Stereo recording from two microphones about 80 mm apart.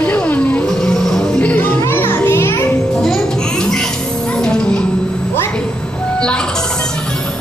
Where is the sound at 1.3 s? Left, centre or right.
Left.